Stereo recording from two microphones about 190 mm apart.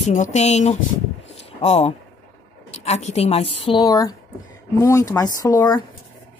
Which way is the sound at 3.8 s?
20° left (ahead or behind).